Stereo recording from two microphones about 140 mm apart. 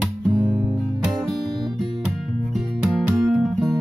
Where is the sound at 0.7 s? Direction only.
Centre (ahead or behind).